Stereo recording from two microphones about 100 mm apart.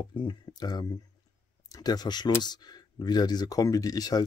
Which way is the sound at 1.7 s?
40° left (ahead or behind).